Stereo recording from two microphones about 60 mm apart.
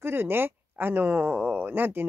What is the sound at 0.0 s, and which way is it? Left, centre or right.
Speech, right.